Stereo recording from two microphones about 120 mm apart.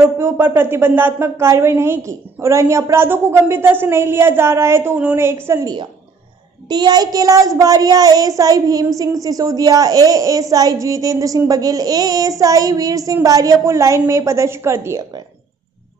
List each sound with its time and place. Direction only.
0.0 s a child's voice: 20° right (ahead or behind)
6.7 s a child's voice: 35° right (ahead or behind)